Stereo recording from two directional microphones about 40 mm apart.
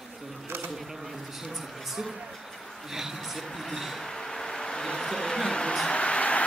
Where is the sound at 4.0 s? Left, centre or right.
Centre.